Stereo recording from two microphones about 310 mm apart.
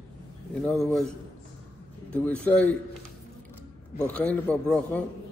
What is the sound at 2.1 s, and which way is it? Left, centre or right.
Speech, centre.